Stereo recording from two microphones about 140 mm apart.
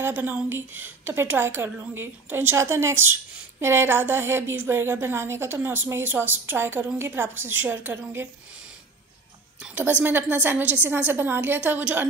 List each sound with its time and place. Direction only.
0.0 s a woman's voice: 15° right (ahead or behind)
9.6 s a woman's voice: 10° right (ahead or behind)